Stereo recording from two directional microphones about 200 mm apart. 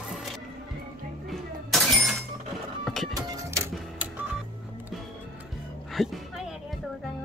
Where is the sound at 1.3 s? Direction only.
Centre (ahead or behind).